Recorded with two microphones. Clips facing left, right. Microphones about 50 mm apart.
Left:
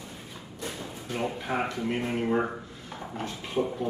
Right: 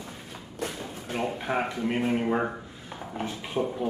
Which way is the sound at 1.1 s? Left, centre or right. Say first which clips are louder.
Right 2 dB; right.